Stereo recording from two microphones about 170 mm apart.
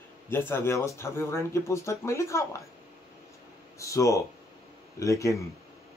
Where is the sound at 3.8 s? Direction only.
20° left (ahead or behind).